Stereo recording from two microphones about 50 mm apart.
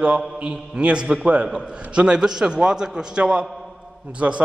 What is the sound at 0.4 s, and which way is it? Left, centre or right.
A man's voice, right.